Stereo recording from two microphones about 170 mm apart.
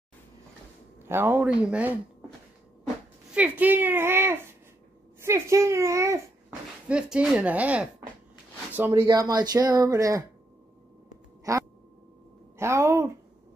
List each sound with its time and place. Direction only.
1.0 s a child's voice: 15° right (ahead or behind)
3.3 s a child's voice: 10° right (ahead or behind)
6.9 s a child's voice: 5° right (ahead or behind)
11.5 s speech: 20° right (ahead or behind)
12.5 s a sound: 15° right (ahead or behind)